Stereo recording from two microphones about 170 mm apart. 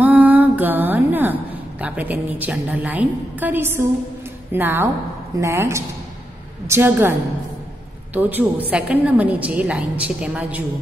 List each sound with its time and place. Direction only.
0.0 s a woman's voice: 10° right (ahead or behind)